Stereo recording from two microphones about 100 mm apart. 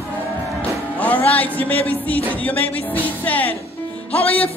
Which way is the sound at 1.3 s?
15° left (ahead or behind).